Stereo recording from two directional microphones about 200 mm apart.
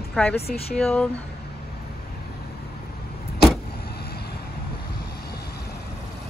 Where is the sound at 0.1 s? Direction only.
5° left (ahead or behind).